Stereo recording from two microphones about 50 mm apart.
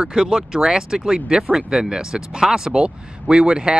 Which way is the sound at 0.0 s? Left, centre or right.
Centre.